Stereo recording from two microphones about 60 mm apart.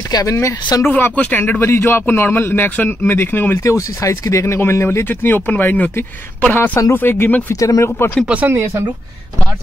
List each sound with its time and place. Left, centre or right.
0.1 s speech: left
0.8 s a man's voice: left
3.6 s speech: left
5.0 s a man's voice: left
7.5 s speech: left
8.3 s speech: right